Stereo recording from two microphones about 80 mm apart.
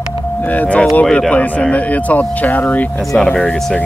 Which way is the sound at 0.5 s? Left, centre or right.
Centre.